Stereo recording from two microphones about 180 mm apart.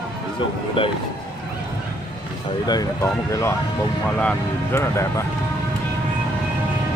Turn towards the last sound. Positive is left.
turn(degrees=15)  # may be behind; listen again after turning